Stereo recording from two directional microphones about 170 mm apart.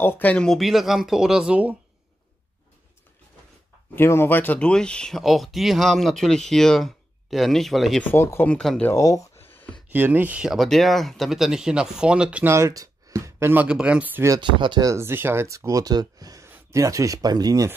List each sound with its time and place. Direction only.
0.0 s speech: 10° left (ahead or behind); by 1.8 s 5° right (ahead or behind)
3.9 s speech: 15° left (ahead or behind)
8.0 s speech: 10° left (ahead or behind)
8.9 s a sound: 20° left (ahead or behind)
9.8 s speech: 10° right (ahead or behind)
14.4 s speech: 25° right (ahead or behind)